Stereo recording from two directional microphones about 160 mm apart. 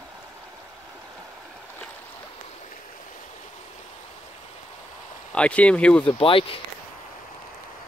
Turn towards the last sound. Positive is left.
turn(degrees=35)  # may be behind; listen again after turning